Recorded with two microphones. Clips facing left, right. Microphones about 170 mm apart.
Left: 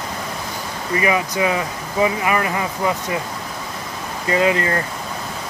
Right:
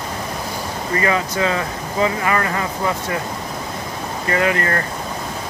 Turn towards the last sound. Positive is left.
turn(degrees=20)  # may be behind; listen again after turning